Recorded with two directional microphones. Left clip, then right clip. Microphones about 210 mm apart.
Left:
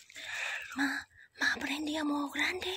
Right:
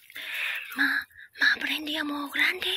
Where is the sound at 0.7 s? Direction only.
10° left (ahead or behind).